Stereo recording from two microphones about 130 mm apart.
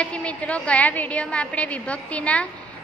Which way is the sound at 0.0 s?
10° left (ahead or behind).